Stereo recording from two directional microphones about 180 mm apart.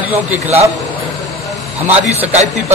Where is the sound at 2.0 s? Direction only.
40° right (ahead or behind).